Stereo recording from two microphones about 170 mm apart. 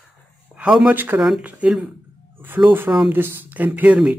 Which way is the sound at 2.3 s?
10° right (ahead or behind).